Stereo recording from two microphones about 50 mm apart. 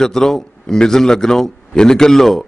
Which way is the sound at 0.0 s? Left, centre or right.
Centre.